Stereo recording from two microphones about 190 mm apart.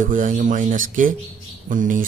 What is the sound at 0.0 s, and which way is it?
Speech, 45° right (ahead or behind).